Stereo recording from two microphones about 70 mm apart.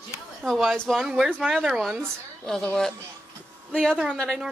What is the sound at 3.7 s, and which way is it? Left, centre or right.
Speech, centre.